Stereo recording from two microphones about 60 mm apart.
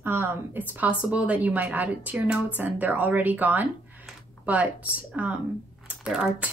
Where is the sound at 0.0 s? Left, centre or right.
Right.